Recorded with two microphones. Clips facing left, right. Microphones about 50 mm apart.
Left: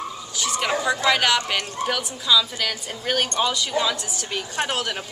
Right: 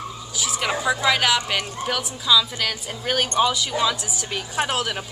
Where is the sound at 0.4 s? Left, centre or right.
Centre.